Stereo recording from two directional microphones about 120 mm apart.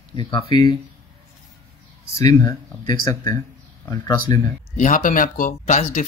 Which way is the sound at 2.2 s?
30° left (ahead or behind).